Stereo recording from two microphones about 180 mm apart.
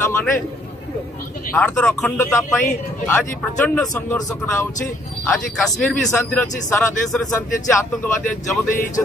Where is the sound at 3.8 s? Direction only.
10° left (ahead or behind).